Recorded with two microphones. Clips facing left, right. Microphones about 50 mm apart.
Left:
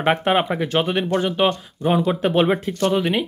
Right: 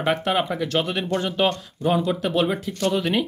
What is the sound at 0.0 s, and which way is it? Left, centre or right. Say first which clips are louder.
Speech: left 4 dB; left.